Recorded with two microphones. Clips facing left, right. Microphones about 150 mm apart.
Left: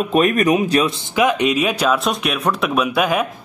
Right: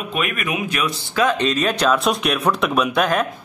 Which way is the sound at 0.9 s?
15° left (ahead or behind).